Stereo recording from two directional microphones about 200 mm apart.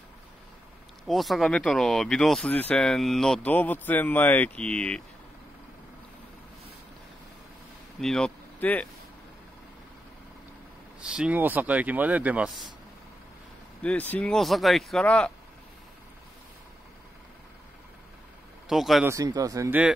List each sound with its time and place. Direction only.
1.0 s speech: centre (ahead or behind)
8.0 s speech: 5° left (ahead or behind)
11.0 s speech: 5° right (ahead or behind)
13.8 s speech: 10° left (ahead or behind)
18.7 s speech: centre (ahead or behind)
19.0 s speech: 15° right (ahead or behind)